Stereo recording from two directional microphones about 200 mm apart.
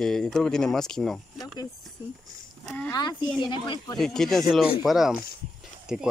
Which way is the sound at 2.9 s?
20° left (ahead or behind).